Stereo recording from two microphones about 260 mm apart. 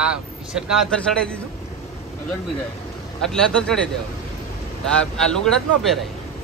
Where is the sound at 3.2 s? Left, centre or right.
Centre.